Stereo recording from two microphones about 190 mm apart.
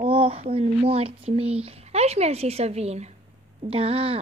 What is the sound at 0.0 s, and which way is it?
Speech, 30° right (ahead or behind).